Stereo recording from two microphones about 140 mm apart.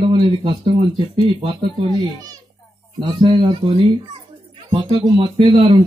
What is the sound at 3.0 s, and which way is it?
Speech, 30° right (ahead or behind).